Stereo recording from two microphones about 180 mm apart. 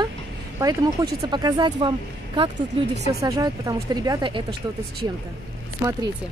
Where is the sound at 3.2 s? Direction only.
20° right (ahead or behind).